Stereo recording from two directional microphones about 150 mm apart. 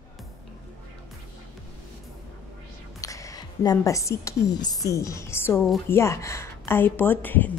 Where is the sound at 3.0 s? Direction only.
20° left (ahead or behind).